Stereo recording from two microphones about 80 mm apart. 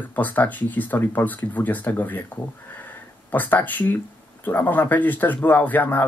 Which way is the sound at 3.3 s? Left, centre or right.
Left.